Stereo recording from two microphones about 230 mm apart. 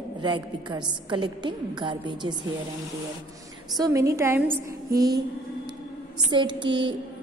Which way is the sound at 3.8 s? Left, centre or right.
Centre.